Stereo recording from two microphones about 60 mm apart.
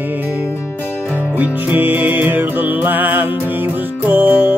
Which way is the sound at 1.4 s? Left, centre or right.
Right.